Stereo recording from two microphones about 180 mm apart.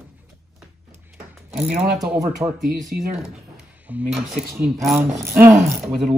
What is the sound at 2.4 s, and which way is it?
Speech, 20° right (ahead or behind).